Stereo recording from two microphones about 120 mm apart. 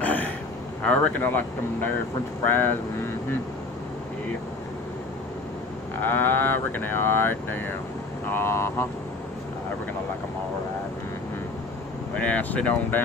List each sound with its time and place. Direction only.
0.0 s a sound: 15° left (ahead or behind)
0.8 s speech: 10° left (ahead or behind)
6.0 s speech: 15° left (ahead or behind)
12.2 s speech: 10° left (ahead or behind)